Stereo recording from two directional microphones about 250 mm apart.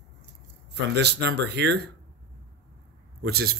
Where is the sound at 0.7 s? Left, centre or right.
Right.